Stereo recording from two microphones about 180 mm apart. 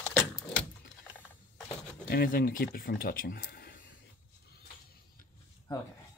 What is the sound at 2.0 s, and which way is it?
Speech, 60° left (ahead or behind).